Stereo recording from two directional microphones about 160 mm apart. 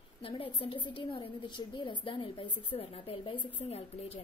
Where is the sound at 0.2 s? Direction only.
35° left (ahead or behind).